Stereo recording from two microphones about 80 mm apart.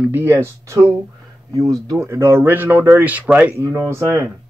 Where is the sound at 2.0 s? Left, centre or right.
Right.